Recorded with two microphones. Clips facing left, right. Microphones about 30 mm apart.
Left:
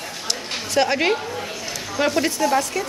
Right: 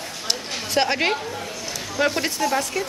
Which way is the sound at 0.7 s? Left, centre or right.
Centre.